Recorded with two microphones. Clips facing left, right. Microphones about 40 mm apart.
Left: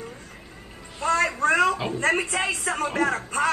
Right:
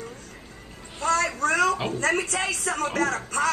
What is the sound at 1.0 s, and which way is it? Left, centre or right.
Music, left.